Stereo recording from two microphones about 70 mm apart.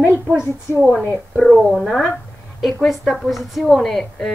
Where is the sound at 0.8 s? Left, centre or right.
Centre.